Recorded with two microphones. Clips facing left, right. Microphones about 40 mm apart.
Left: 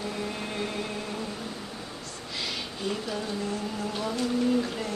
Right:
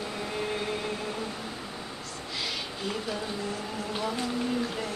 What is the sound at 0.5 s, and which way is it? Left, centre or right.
Vehicle, centre.